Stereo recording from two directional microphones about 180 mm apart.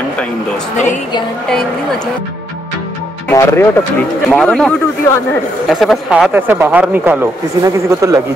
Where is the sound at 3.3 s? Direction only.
15° left (ahead or behind).